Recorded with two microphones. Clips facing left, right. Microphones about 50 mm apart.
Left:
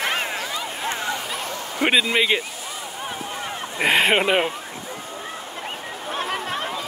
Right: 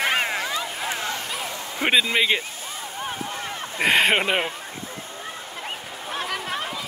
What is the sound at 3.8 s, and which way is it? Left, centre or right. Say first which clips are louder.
Speech: left 1 dB; centre.